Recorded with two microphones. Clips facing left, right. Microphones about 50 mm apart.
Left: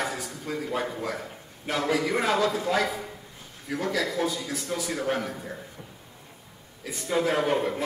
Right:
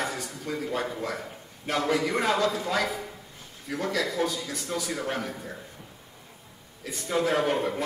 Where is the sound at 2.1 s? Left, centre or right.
Centre.